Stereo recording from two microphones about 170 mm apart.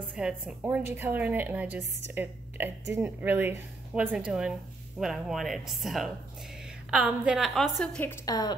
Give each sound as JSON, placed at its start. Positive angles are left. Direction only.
{"t": 0.1, "sound": "a woman's voice", "side_deg": -5}
{"t": 8.3, "sound": "a woman's voice", "side_deg": 25}